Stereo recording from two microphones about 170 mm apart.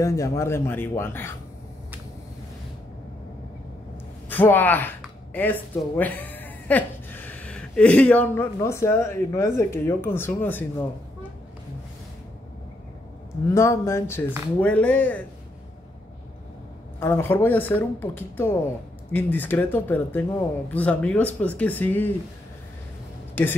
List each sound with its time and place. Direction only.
0.0 s speech: 20° left (ahead or behind)
4.3 s speech: 10° left (ahead or behind)
13.5 s speech: 15° left (ahead or behind)
17.0 s speech: 15° left (ahead or behind)